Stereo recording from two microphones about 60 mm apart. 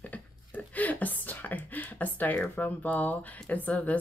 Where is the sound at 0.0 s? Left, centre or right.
Left.